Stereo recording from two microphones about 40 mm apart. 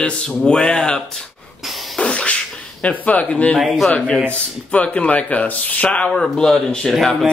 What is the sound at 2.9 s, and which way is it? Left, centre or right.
Speech, left.